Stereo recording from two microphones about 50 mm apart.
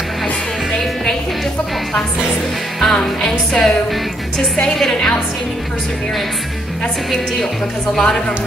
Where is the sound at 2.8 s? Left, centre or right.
Centre.